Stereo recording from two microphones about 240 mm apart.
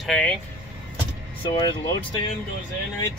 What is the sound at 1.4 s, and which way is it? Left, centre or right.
Speech, centre.